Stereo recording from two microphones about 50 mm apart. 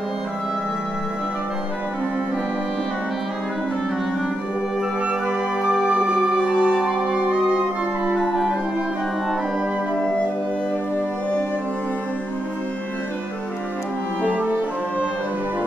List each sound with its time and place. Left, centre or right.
5.6 s music: centre